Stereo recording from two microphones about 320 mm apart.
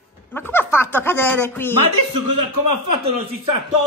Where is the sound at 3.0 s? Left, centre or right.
Centre.